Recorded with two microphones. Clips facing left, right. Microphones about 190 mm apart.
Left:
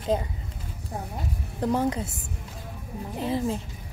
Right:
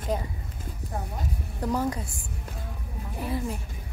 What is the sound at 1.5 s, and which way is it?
Speech, 20° left (ahead or behind).